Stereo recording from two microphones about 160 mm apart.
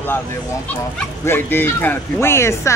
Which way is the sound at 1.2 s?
15° left (ahead or behind).